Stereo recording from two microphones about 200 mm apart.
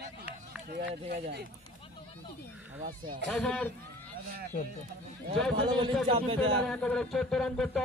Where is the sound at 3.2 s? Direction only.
5° left (ahead or behind).